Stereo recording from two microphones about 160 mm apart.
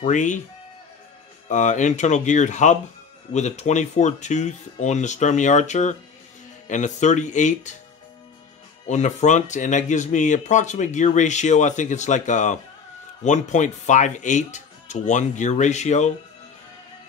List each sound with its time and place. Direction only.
0.0 s speech: 50° left (ahead or behind)
1.5 s speech: 50° left (ahead or behind)
8.8 s speech: 50° left (ahead or behind)